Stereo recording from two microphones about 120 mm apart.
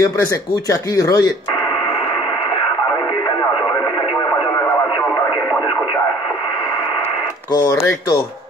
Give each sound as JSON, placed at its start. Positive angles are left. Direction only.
{"t": 0.0, "sound": "speech", "side_deg": 30}
{"t": 7.5, "sound": "speech", "side_deg": 25}